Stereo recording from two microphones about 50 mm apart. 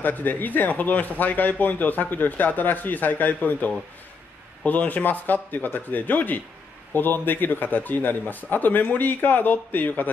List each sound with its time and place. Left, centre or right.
0.0 s speech: left